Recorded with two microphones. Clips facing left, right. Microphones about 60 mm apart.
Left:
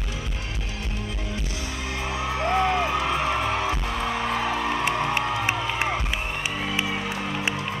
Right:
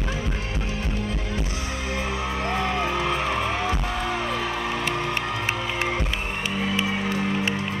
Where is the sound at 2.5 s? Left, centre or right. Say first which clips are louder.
Left 4 dB; centre.